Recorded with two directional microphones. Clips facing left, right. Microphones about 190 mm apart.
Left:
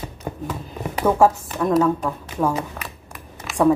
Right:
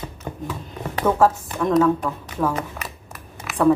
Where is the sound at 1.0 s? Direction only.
10° left (ahead or behind).